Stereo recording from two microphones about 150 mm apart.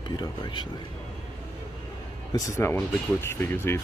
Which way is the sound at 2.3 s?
20° left (ahead or behind).